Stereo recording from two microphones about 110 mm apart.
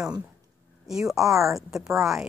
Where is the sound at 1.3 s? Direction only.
30° right (ahead or behind).